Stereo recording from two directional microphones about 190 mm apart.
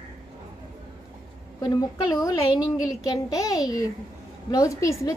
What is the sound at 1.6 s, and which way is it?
A woman's voice, 20° left (ahead or behind).